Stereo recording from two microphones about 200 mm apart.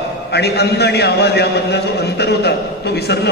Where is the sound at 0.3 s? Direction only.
55° left (ahead or behind).